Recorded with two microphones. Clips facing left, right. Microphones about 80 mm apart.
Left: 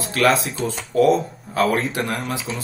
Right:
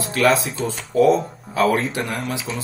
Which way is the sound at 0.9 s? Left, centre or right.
Left.